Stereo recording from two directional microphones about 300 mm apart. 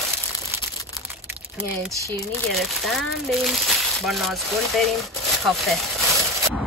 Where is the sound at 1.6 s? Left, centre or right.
Centre.